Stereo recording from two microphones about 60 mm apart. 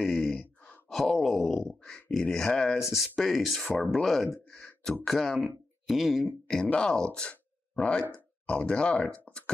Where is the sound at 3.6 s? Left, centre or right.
Centre.